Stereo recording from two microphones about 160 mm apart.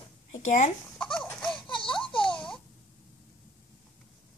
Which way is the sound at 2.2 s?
5° left (ahead or behind).